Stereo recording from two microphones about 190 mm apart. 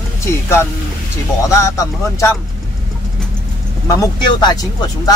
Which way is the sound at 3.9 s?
20° left (ahead or behind).